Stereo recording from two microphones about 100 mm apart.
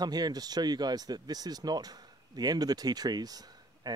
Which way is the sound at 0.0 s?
40° right (ahead or behind).